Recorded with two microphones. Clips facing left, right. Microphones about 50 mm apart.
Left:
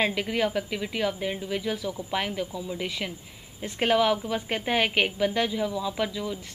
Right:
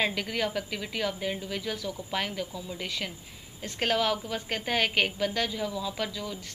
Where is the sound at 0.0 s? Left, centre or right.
Centre.